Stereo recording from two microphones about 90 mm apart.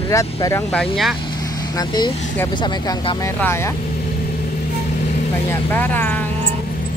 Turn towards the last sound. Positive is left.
turn(degrees=20)  # may be behind; listen again after turning